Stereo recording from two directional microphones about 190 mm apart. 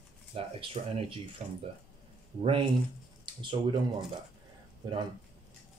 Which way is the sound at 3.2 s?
25° right (ahead or behind).